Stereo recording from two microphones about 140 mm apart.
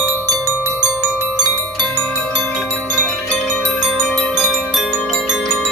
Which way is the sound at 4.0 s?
10° left (ahead or behind).